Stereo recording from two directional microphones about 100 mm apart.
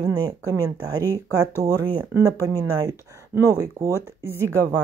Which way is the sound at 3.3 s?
30° right (ahead or behind).